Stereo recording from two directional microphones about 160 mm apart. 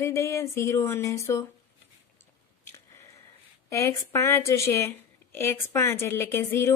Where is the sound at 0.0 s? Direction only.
20° left (ahead or behind).